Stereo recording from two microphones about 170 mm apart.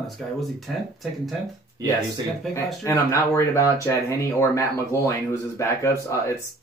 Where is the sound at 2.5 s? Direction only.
15° left (ahead or behind).